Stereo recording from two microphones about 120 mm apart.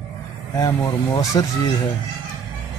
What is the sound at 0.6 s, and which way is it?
Speech, 30° left (ahead or behind).